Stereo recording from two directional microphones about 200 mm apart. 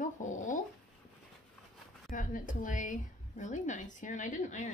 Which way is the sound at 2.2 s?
40° left (ahead or behind).